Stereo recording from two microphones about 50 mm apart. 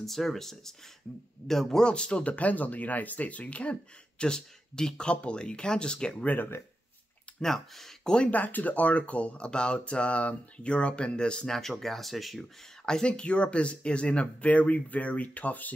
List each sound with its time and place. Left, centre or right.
0.0 s speech: centre
1.9 s speech: centre
4.2 s speech: centre
6.2 s speech: left
7.3 s speech: centre
8.3 s speech: left; by 12.4 s centre
12.8 s speech: centre; by 15.7 s left